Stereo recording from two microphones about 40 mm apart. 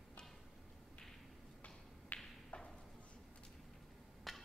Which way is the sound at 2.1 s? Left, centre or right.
Left.